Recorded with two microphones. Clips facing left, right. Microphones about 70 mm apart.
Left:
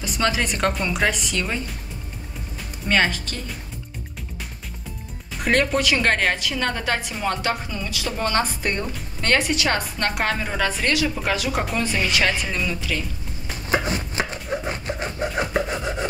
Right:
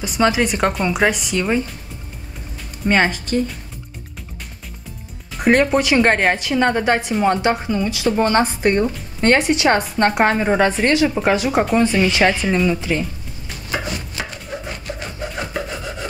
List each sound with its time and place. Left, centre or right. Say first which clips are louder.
0.0 s speech: right 6 dB; centre
2.9 s a woman's voice: right 4 dB; right
5.4 s a woman's voice: right 5 dB; right
13.8 s a sound: left 2 dB; left
15.2 s rub: left 3 dB; centre